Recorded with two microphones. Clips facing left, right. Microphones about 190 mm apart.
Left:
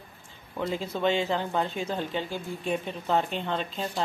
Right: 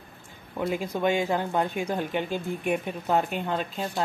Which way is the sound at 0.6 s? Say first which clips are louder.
Right 2 dB; 10° right (ahead or behind).